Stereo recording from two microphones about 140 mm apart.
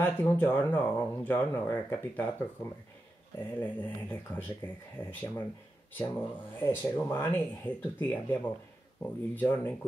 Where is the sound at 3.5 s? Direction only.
15° left (ahead or behind).